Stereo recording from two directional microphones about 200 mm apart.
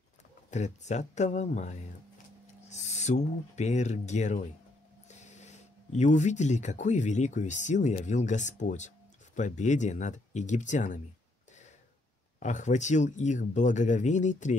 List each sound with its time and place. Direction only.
0.5 s speech: 35° left (ahead or behind)
12.4 s speech: 40° left (ahead or behind)